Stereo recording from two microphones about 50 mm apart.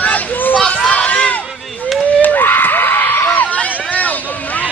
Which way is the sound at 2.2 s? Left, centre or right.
Left.